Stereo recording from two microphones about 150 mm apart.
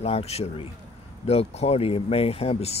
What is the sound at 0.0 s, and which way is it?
Speech, 45° left (ahead or behind).